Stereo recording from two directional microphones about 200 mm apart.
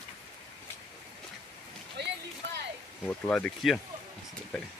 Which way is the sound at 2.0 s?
60° right (ahead or behind).